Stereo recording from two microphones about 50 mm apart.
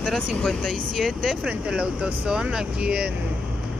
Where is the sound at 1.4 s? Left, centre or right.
Centre.